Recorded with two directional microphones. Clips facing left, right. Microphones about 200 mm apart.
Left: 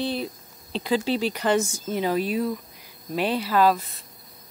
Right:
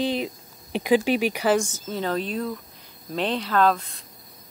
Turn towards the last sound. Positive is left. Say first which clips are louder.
# left 1 dB
turn(degrees=5)  # may be behind; listen again after turning